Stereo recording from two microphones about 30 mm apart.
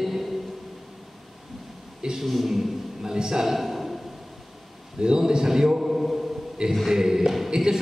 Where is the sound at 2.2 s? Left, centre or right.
Centre.